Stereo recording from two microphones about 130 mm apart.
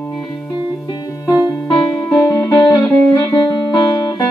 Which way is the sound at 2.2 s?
25° left (ahead or behind).